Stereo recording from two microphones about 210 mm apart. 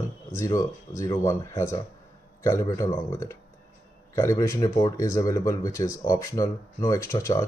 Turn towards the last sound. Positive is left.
turn(degrees=15)  # may be behind; listen again after turning